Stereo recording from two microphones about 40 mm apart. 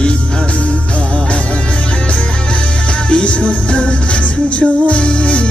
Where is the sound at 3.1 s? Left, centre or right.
Left.